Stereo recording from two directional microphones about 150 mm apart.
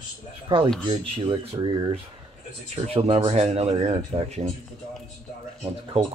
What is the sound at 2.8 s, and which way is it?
Speech, 40° right (ahead or behind).